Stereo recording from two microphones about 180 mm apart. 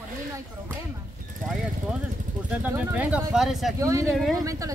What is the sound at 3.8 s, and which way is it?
Speech, 15° right (ahead or behind).